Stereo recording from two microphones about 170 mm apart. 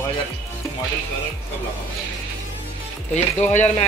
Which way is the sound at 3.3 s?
40° left (ahead or behind).